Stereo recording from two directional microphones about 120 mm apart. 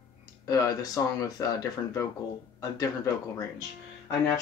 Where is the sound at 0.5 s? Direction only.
30° left (ahead or behind).